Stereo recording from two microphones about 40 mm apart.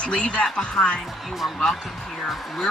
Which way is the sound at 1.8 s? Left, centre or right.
Centre.